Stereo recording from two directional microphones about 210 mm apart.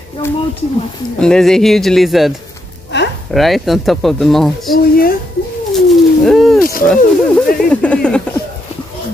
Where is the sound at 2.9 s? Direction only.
55° left (ahead or behind).